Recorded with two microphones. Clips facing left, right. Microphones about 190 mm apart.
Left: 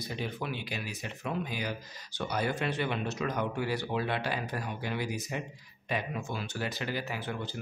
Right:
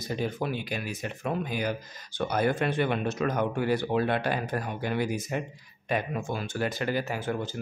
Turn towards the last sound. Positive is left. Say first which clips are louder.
# right 6 dB
turn(degrees=-45)  # may be behind; listen again after turning